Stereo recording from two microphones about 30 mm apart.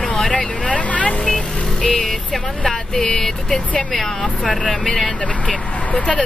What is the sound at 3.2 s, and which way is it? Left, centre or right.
Speech, centre.